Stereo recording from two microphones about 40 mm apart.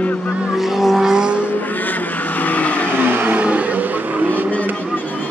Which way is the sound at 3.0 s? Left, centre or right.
Right.